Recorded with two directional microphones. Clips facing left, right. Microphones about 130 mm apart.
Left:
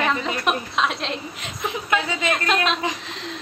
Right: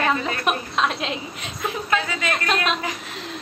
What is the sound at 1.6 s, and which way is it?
Speech, 20° left (ahead or behind).